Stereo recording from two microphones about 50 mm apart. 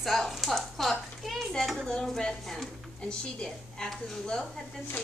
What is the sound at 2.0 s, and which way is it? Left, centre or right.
Speech, centre.